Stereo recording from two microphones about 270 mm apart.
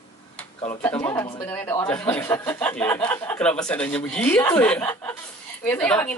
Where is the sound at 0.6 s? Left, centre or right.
Centre.